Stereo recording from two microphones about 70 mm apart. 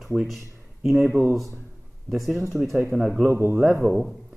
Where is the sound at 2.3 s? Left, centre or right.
Right.